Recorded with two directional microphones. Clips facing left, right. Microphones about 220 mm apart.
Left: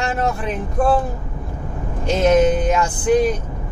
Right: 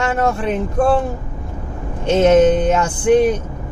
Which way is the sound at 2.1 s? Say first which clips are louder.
Right 4 dB; 25° right (ahead or behind).